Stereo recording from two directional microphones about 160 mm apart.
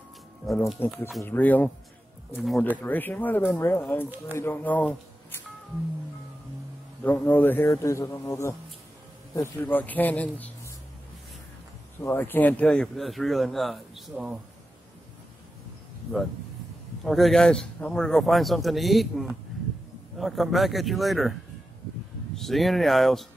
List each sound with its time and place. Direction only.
0.5 s speech: centre (ahead or behind)
1.2 s speech: 10° left (ahead or behind)
2.8 s speech: 10° left (ahead or behind)
7.0 s speech: 10° left (ahead or behind)
12.0 s speech: 15° left (ahead or behind); by 14.4 s 5° right (ahead or behind)
17.0 s speech: centre (ahead or behind)
22.4 s speech: centre (ahead or behind)